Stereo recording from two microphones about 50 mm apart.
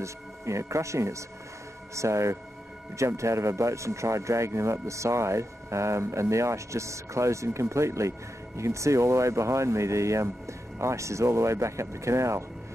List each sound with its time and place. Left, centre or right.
0.0 s speech: right